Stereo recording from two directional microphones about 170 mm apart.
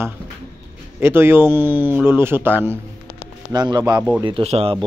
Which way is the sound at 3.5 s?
25° right (ahead or behind).